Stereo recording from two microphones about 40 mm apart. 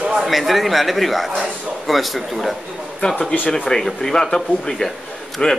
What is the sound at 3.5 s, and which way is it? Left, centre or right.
Speech, centre.